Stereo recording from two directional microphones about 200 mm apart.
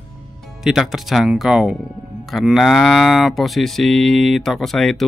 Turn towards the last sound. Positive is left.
turn(degrees=0)  # may be behind; listen again after turning